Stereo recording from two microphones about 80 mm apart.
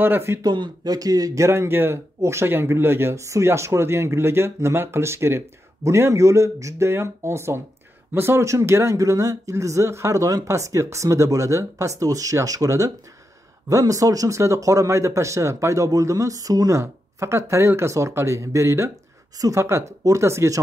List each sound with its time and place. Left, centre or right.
0.0 s speech: right
0.4 s speech: right